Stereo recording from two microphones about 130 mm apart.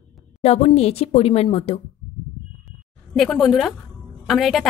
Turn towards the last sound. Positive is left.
turn(degrees=0)  # may be behind; listen again after turning